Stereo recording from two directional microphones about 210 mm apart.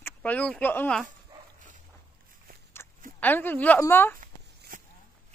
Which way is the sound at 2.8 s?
10° left (ahead or behind).